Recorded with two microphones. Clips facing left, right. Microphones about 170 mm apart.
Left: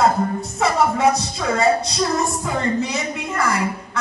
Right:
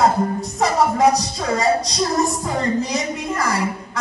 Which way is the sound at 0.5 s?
35° right (ahead or behind).